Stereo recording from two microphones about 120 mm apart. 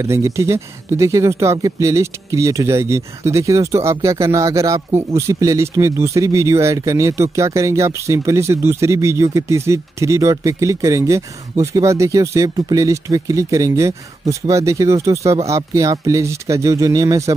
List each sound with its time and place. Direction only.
0.0 s speech: 25° right (ahead or behind)